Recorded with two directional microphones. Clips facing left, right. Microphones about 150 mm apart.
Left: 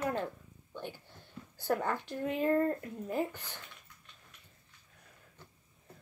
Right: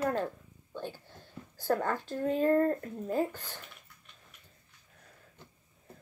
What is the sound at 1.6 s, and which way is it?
Speech, 15° left (ahead or behind).